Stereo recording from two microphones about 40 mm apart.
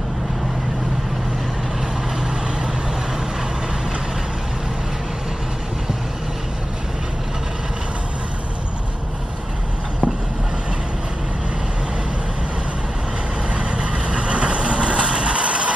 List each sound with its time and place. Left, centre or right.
13.5 s vehicle: right